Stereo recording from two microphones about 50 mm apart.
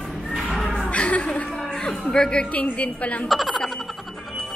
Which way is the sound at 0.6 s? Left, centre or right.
Centre.